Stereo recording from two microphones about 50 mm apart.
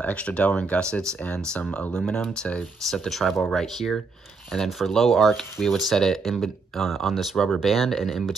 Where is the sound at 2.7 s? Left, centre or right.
Centre.